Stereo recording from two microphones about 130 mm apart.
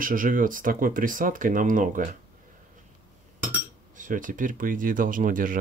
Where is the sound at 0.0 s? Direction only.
90° right.